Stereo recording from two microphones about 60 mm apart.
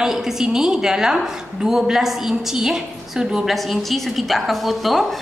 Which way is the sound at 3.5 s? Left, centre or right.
Centre.